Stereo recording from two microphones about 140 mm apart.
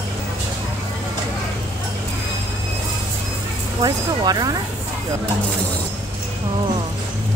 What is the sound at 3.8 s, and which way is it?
Speech, 30° right (ahead or behind).